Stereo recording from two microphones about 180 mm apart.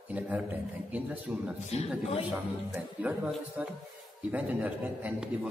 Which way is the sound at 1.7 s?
35° left (ahead or behind).